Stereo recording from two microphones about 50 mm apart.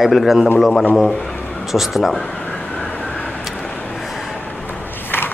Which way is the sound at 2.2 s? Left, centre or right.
Left.